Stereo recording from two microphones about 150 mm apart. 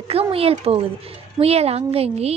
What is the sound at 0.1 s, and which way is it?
A woman's voice, 40° right (ahead or behind).